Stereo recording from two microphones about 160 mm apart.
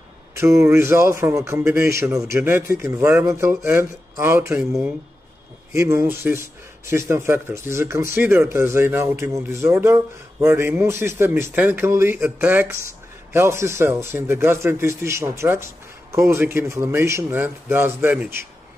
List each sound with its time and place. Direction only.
0.3 s speech: 15° right (ahead or behind)